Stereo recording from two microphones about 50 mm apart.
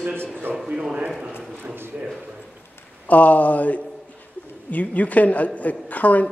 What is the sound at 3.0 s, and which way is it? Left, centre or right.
A woman's voice, left.